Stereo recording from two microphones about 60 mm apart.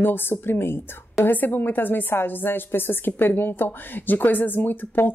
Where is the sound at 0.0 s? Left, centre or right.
Left.